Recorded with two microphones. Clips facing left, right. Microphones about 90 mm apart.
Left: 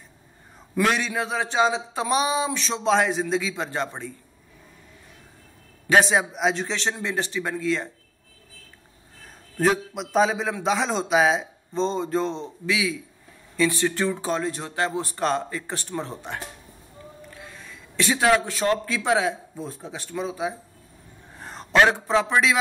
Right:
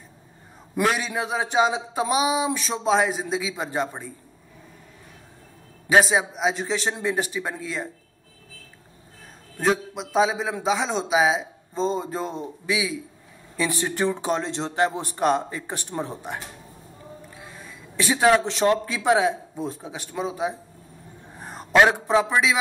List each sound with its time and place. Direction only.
0.7 s a man's voice: 10° right (ahead or behind)
5.9 s a man's voice: 5° right (ahead or behind)
9.6 s a man's voice: centre (ahead or behind); by 20.5 s 20° right (ahead or behind)
21.4 s a sound: 15° right (ahead or behind)
22.3 s speech: centre (ahead or behind)